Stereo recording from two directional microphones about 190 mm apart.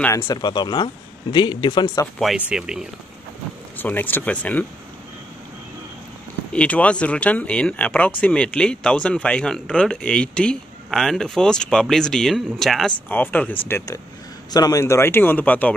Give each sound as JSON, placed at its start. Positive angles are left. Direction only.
{"t": 0.0, "sound": "speech", "side_deg": 15}
{"t": 2.1, "sound": "speech", "side_deg": 0}
{"t": 3.7, "sound": "speech", "side_deg": 10}
{"t": 6.5, "sound": "speech", "side_deg": 5}